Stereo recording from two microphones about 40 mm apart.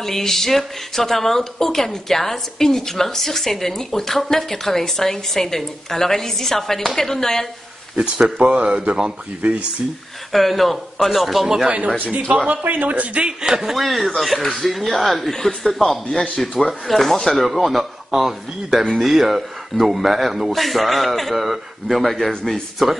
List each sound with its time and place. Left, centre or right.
0.0 s speech: centre
7.9 s speech: right
9.4 s speech: right
10.3 s speech: centre
11.4 s a man's voice: centre
12.6 s speech: right
13.4 s a man's voice: centre
13.8 s speech: centre
17.6 s speech: centre